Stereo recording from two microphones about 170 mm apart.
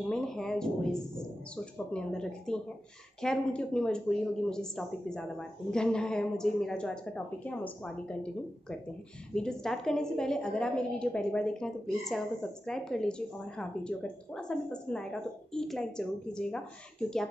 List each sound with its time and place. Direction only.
0.1 s speech: centre (ahead or behind)